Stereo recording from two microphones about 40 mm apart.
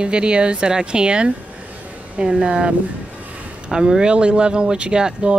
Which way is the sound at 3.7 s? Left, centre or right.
Right.